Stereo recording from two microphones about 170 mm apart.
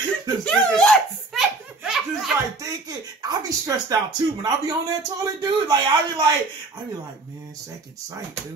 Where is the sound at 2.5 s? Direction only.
20° right (ahead or behind).